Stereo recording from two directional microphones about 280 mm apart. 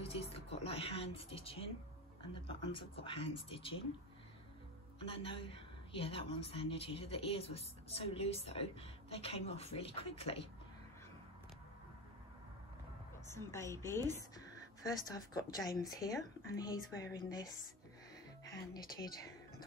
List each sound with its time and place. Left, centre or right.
0.0 s a woman's voice: left
5.0 s a woman's voice: centre
13.3 s speech: centre
18.4 s music: centre